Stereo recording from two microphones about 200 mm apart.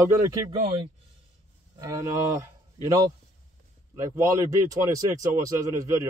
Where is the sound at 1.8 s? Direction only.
15° right (ahead or behind).